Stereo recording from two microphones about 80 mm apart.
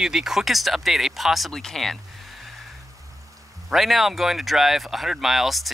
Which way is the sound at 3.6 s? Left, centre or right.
Centre.